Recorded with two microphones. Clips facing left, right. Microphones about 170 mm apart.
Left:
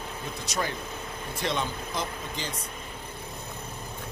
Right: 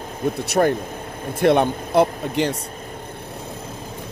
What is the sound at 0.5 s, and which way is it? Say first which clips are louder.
Speech: right 13 dB; 55° right (ahead or behind).